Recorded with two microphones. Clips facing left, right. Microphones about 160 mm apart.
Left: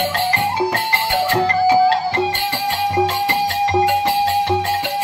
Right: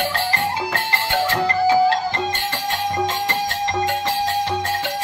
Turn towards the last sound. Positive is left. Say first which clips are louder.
# left 4 dB
turn(degrees=15)  # may be behind; listen again after turning